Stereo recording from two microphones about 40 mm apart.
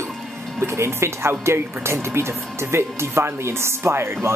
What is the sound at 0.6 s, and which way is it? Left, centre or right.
Speech, right.